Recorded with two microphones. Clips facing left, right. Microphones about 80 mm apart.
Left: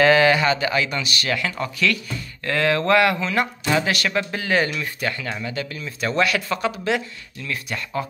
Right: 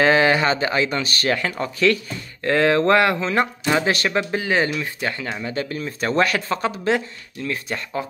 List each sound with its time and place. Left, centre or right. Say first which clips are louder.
0.0 s speech: left 1 dB; right